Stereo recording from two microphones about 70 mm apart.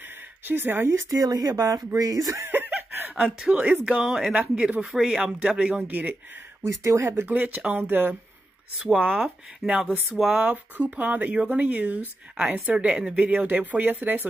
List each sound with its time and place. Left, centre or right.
0.5 s speech: right
1.1 s speech: right
2.3 s snicker: right
3.3 s speech: centre
3.5 s speech: right
3.8 s speech: centre
6.6 s speech: right
8.9 s speech: centre
12.7 s speech: centre